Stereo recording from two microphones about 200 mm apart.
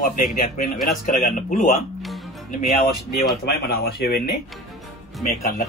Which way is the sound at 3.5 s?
50° left (ahead or behind).